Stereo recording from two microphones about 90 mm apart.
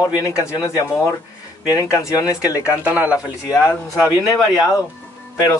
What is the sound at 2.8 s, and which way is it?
Speech, 20° right (ahead or behind).